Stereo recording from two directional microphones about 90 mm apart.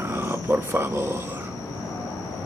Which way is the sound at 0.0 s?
25° right (ahead or behind).